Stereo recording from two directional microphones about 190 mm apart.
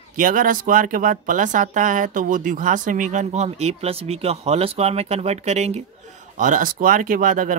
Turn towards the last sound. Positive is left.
turn(degrees=-45)  # may be behind; listen again after turning